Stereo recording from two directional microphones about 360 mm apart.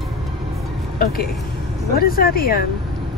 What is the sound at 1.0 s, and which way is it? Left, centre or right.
A woman's voice, left.